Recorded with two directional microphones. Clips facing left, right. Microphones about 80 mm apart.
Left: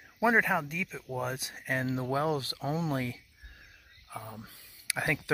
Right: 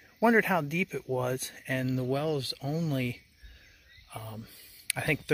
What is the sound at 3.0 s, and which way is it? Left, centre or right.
Speech, left.